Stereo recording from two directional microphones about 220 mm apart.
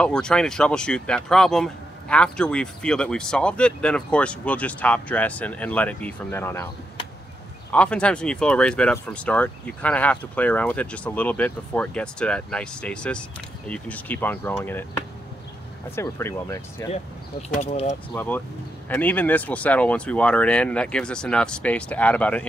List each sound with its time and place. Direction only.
0.0 s speech: 5° left (ahead or behind)
7.7 s speech: 5° left (ahead or behind)
16.0 s speech: 10° left (ahead or behind)
16.9 s speech: 30° left (ahead or behind)
18.1 s speech: 5° left (ahead or behind)